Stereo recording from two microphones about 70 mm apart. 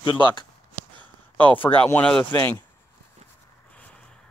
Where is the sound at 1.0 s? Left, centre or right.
Left.